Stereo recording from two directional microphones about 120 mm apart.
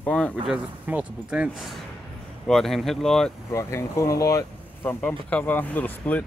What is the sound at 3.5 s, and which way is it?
Speech, 25° left (ahead or behind).